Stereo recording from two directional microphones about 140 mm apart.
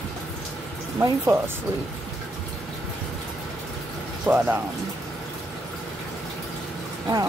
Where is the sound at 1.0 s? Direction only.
20° right (ahead or behind).